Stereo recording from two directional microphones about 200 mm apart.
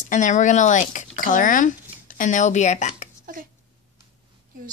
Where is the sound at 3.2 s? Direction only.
45° right (ahead or behind).